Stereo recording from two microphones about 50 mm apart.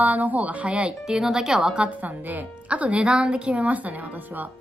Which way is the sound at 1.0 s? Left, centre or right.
Centre.